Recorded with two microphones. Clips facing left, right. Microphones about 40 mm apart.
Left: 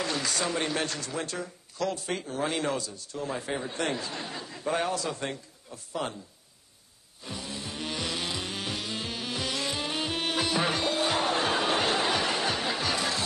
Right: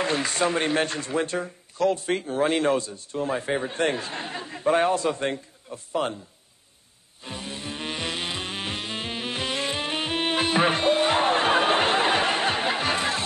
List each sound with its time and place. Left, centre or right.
0.0 s speech: right
7.2 s music: right